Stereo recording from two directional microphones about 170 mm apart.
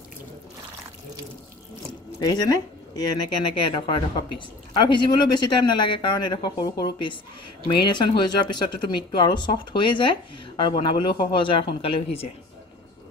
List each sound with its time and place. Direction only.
2.1 s speech: 25° left (ahead or behind)